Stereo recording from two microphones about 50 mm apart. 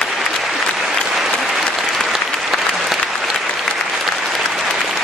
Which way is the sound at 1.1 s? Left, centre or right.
Centre.